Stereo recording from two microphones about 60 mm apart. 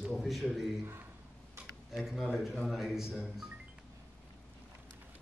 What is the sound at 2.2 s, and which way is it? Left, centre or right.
Speech, centre.